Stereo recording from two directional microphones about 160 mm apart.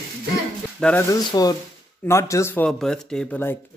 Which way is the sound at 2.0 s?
15° left (ahead or behind).